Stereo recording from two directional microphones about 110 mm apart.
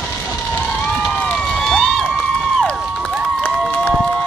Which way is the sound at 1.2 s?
5° left (ahead or behind).